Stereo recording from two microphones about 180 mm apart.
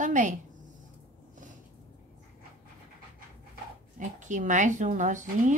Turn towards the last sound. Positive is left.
turn(degrees=-45)  # may be behind; listen again after turning